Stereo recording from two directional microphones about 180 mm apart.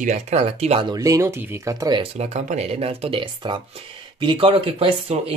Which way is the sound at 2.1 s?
40° right (ahead or behind).